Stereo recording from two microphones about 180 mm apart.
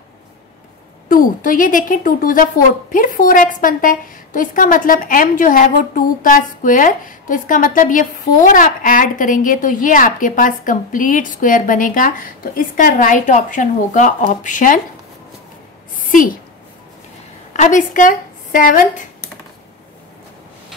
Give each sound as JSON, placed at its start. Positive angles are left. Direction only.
{"t": 1.0, "sound": "a woman's voice", "side_deg": 50}
{"t": 16.1, "sound": "a sound", "side_deg": 50}
{"t": 17.5, "sound": "a woman's voice", "side_deg": 45}